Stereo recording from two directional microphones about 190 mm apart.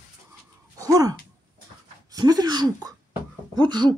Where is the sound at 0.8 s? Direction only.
20° right (ahead or behind).